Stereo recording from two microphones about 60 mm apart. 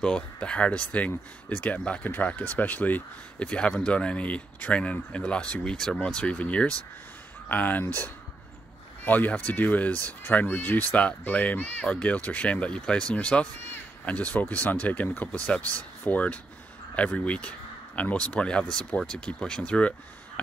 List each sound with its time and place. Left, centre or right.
0.0 s speech: centre